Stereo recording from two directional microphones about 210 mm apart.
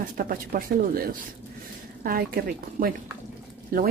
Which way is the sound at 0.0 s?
40° right (ahead or behind).